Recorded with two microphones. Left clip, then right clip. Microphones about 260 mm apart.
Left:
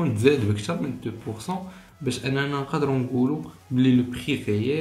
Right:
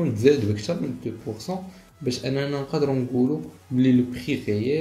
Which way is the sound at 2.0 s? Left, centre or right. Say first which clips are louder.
Even; centre.